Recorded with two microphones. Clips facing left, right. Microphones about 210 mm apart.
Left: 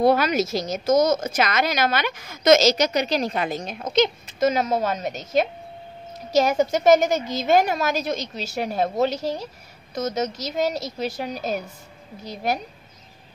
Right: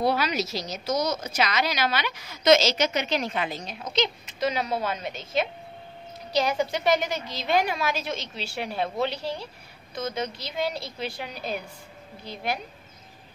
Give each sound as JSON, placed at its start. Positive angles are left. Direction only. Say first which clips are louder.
{"t": 0.0, "sound": "a woman's voice", "louder": "left 6 dB", "side_deg": 50}